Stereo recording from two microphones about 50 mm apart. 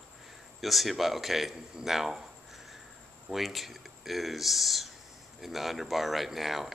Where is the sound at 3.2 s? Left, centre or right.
Centre.